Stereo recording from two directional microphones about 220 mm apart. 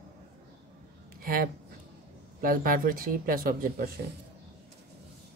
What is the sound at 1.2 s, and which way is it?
Speech, 40° right (ahead or behind).